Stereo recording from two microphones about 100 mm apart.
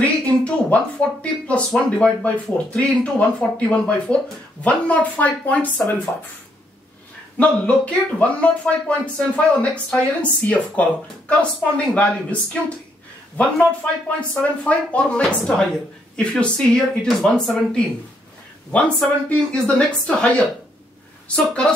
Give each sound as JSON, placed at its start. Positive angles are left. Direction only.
{"t": 0.0, "sound": "a sound", "side_deg": 15}
{"t": 1.0, "sound": "speech", "side_deg": 5}
{"t": 7.3, "sound": "speech", "side_deg": 15}